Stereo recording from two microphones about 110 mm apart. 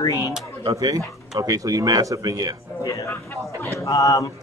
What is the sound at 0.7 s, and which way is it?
Speech, 35° right (ahead or behind).